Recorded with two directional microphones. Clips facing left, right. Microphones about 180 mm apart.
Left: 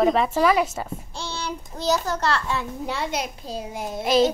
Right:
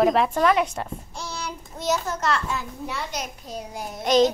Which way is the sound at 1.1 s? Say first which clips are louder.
Left 3 dB; 30° left (ahead or behind).